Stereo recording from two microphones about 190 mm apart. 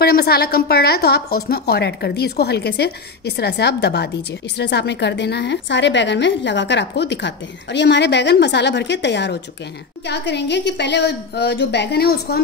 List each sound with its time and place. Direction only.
0.0 s a woman's voice: 55° left (ahead or behind)